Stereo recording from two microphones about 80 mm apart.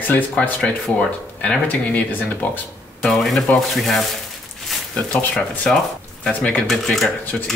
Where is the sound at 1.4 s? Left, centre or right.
Centre.